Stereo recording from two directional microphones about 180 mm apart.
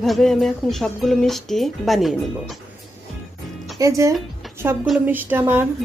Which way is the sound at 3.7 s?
15° right (ahead or behind).